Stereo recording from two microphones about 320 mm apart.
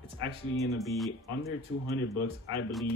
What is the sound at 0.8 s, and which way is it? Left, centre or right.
Speech, centre.